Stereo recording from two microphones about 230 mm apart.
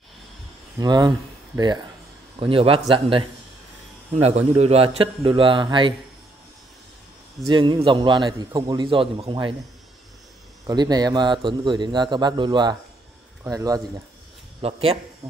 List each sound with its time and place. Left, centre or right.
0.7 s a man's voice: centre
7.4 s a man's voice: centre
10.7 s a man's voice: centre
14.6 s a man's voice: right